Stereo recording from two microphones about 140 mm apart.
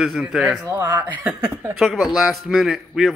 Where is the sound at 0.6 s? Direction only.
20° right (ahead or behind).